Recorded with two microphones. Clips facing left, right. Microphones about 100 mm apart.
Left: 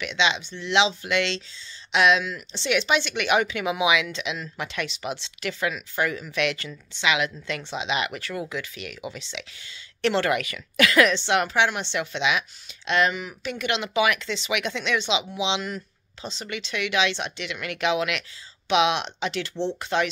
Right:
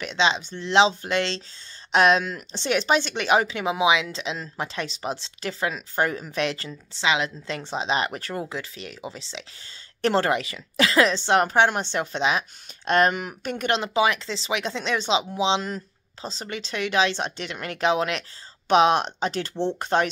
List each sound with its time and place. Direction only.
0.0 s a woman's voice: 35° right (ahead or behind)
11.1 s speech: 40° right (ahead or behind)